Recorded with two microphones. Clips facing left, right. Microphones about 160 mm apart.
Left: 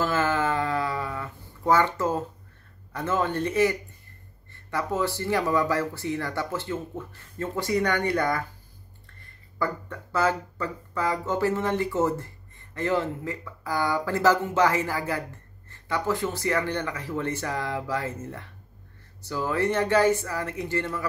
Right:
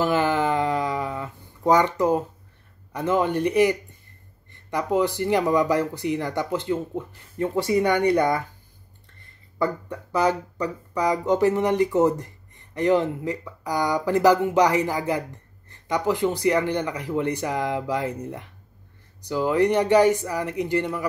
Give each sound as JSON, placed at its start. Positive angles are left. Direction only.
{"t": 0.0, "sound": "a sound", "side_deg": -15}
{"t": 2.9, "sound": "speech", "side_deg": -15}
{"t": 9.6, "sound": "speech", "side_deg": -15}